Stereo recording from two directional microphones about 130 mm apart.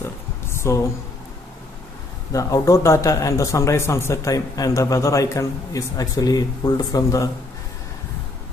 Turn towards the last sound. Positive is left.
turn(degrees=25)  # may be behind; listen again after turning